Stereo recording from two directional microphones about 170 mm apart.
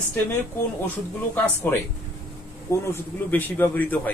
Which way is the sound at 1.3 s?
10° left (ahead or behind).